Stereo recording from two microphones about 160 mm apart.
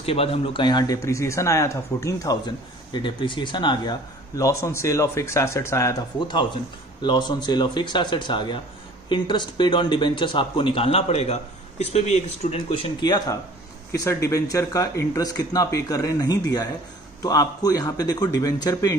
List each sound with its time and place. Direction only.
0.0 s speech: 35° left (ahead or behind)
4.4 s a man's voice: 20° left (ahead or behind)